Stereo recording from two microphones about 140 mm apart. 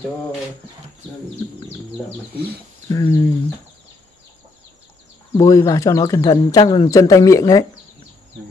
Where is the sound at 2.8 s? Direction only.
25° left (ahead or behind).